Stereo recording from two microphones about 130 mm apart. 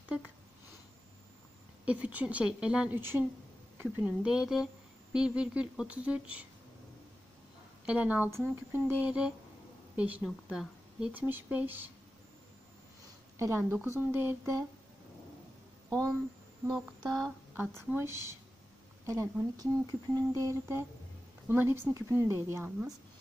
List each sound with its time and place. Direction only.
1.9 s speech: 10° right (ahead or behind)
3.0 s speech: 15° right (ahead or behind)
7.8 s speech: 10° right (ahead or behind)
13.4 s speech: 20° right (ahead or behind)
16.7 s speech: centre (ahead or behind)
17.9 s speech: 20° right (ahead or behind)